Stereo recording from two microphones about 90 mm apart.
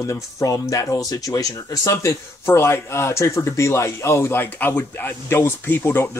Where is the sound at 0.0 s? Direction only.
40° left (ahead or behind).